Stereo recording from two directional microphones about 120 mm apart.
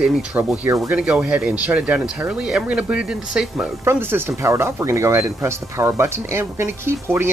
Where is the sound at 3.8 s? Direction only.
20° right (ahead or behind).